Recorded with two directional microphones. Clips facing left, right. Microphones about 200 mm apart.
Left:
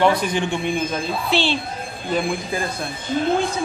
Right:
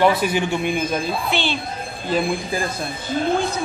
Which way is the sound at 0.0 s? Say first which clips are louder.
Right 1 dB; 5° right (ahead or behind).